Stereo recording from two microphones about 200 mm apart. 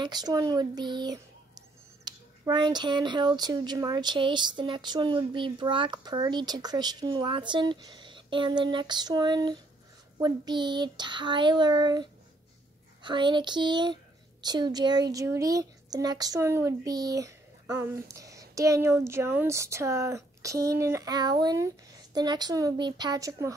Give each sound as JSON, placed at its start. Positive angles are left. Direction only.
{"t": 0.0, "sound": "speech", "side_deg": -20}